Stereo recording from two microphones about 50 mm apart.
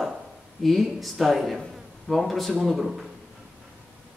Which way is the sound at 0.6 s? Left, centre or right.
Centre.